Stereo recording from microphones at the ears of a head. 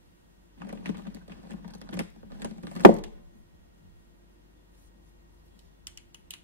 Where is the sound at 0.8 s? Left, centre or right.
Left.